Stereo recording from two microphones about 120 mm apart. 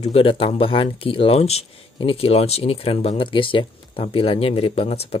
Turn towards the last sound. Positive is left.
turn(degrees=55)  # may be behind; listen again after turning